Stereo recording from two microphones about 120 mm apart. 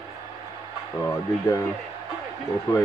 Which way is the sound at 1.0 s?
30° left (ahead or behind).